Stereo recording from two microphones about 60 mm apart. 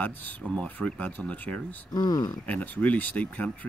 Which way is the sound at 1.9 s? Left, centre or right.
Left.